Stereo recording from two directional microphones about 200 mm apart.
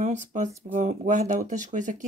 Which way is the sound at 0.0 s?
35° right (ahead or behind).